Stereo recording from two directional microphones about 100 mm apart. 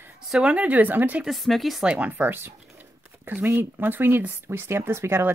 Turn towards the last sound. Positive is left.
turn(degrees=-25)  # may be behind; listen again after turning